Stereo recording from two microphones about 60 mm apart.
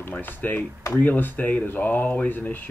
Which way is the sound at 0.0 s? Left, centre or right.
Left.